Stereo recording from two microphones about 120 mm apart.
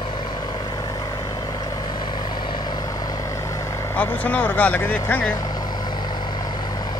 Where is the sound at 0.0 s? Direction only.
40° left (ahead or behind); by 3.9 s 25° left (ahead or behind).